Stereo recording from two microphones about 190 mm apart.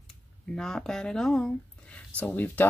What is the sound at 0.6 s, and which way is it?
Speech, 5° left (ahead or behind).